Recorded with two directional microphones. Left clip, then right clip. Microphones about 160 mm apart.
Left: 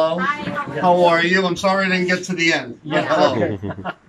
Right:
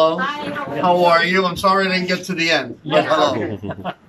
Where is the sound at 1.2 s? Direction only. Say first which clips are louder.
Right 1 dB; 5° right (ahead or behind).